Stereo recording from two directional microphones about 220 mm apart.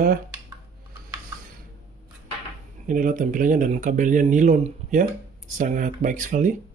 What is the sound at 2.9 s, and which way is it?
Speech, 40° right (ahead or behind).